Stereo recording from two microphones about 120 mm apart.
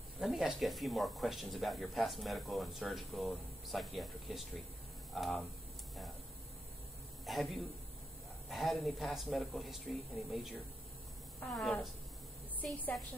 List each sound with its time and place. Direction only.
0.2 s speech: 5° right (ahead or behind)
7.2 s speech: centre (ahead or behind)